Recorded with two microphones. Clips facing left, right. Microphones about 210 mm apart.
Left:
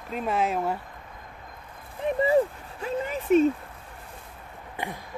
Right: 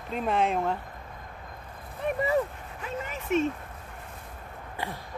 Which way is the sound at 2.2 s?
30° left (ahead or behind).